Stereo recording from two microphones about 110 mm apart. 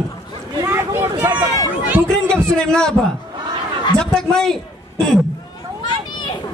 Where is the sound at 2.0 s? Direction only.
5° left (ahead or behind).